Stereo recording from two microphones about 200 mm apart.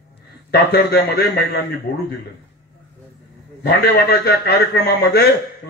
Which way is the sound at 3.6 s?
50° left (ahead or behind).